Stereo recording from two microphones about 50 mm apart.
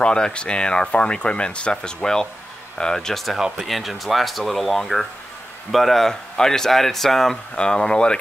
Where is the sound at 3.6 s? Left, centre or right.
Centre.